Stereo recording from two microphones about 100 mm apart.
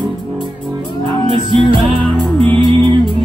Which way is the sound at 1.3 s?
55° right (ahead or behind).